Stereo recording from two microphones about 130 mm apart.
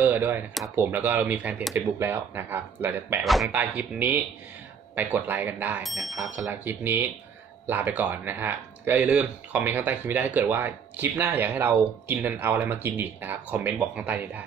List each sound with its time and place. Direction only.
0.0 s speech: 15° right (ahead or behind)
5.8 s speech: centre (ahead or behind)